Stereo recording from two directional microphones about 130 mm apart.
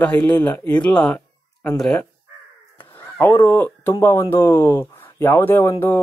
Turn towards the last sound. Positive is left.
turn(degrees=20)  # may be behind; listen again after turning